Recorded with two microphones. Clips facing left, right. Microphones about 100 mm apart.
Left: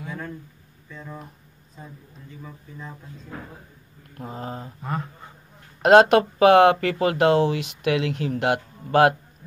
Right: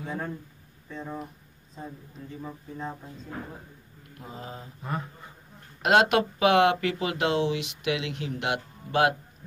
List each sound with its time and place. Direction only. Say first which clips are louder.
0.0 s a sound: right 1 dB; 30° right (ahead or behind)
0.8 s speech: right 3 dB; 30° right (ahead or behind)
2.4 s speech: right 4 dB; 35° right (ahead or behind)
4.2 s speech: left 7 dB; 45° left (ahead or behind)
5.8 s speech: left 7 dB; 40° left (ahead or behind)